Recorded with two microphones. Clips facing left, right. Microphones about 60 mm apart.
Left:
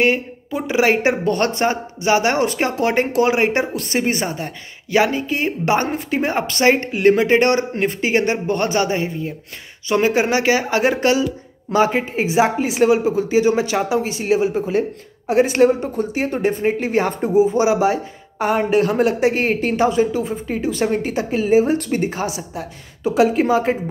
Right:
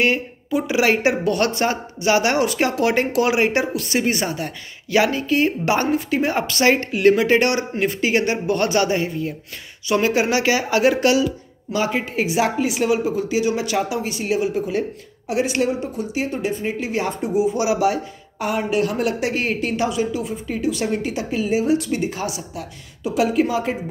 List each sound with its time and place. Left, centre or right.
0.0 s speech: left